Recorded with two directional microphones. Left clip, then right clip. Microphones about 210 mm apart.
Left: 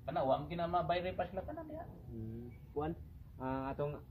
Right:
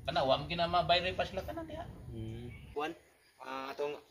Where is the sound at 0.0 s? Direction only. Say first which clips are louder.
Right 4 dB; 5° left (ahead or behind).